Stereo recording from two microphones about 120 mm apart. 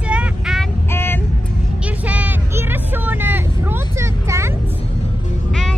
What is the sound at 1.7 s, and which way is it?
Vehicle, 10° right (ahead or behind).